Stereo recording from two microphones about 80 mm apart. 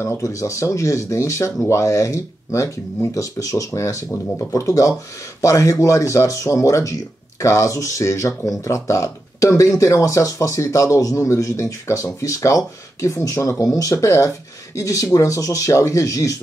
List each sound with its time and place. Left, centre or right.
0.0 s speech: left